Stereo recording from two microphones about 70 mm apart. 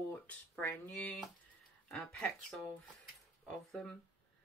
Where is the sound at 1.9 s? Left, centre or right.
Centre.